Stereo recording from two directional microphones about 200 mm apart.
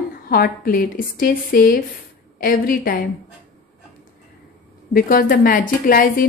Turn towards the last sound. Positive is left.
turn(degrees=45)  # may be behind; listen again after turning